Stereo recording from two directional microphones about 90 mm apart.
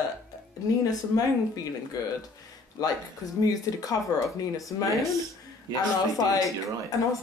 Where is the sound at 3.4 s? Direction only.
45° left (ahead or behind).